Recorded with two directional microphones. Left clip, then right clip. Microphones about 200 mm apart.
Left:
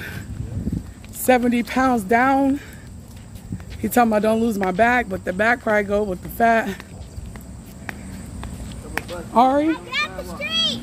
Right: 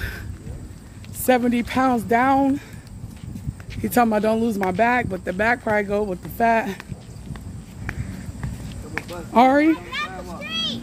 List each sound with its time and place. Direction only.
1.2 s speech: 5° right (ahead or behind)
3.8 s speech: 5° right (ahead or behind)
9.1 s a sound: 35° right (ahead or behind)
9.7 s children playing: 20° left (ahead or behind)